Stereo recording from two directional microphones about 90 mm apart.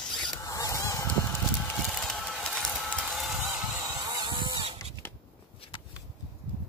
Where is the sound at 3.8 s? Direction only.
40° right (ahead or behind).